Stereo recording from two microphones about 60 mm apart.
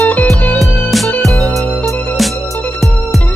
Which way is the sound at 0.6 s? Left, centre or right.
Centre.